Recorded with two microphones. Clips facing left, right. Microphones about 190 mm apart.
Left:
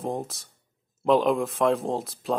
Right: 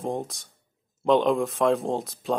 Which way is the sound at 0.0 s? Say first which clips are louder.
Right 1 dB; centre (ahead or behind).